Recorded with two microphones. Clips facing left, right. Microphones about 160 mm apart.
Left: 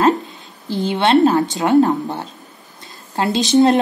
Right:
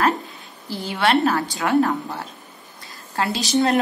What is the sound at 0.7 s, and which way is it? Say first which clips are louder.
A woman's voice: left 5 dB; 20° left (ahead or behind).